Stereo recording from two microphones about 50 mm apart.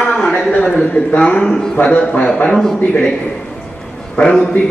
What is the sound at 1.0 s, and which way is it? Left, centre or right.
A man's voice, left.